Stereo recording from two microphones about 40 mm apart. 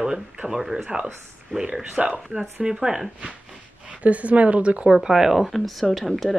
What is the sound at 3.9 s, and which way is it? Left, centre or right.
A woman's voice, right.